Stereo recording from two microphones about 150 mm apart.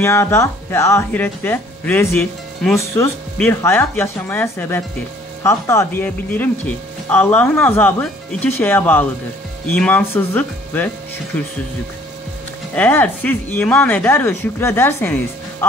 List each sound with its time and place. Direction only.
0.0 s speech: 15° left (ahead or behind)
12.7 s speech: 10° left (ahead or behind)